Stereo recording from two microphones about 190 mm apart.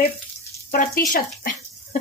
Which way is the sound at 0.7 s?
45° left (ahead or behind).